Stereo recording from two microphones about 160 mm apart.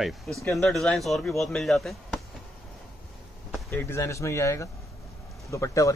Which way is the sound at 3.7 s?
15° left (ahead or behind).